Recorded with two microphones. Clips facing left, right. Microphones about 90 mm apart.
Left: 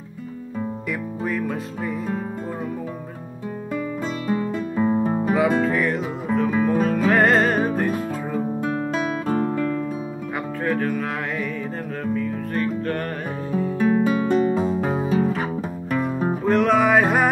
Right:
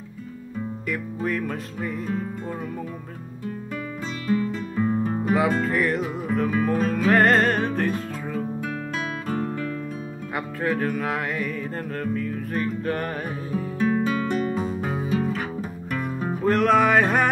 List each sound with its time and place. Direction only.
1.2 s music: centre (ahead or behind)
4.7 s music: 15° left (ahead or behind)
5.2 s music: centre (ahead or behind)
8.5 s music: 25° left (ahead or behind)
10.6 s music: centre (ahead or behind)
14.0 s music: 25° left (ahead or behind)
16.4 s music: centre (ahead or behind)